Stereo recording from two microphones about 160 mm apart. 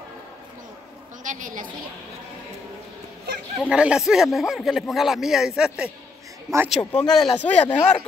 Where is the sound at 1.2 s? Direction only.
55° right (ahead or behind).